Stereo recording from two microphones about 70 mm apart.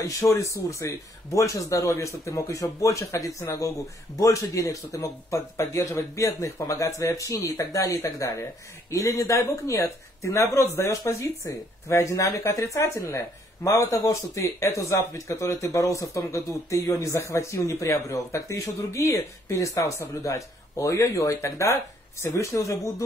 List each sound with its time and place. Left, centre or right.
0.0 s speech: left